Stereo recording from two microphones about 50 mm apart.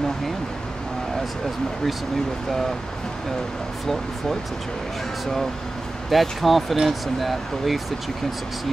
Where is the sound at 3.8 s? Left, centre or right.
Centre.